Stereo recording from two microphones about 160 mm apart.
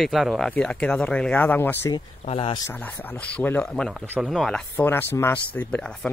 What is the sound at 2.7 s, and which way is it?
Speech, 10° left (ahead or behind).